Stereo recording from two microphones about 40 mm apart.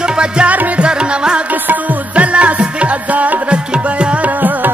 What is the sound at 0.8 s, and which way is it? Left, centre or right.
Music, right.